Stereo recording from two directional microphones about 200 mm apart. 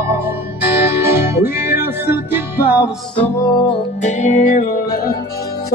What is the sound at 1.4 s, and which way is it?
Music, 10° right (ahead or behind).